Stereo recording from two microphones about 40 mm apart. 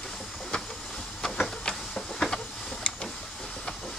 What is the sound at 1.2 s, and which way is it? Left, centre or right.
Printer, centre.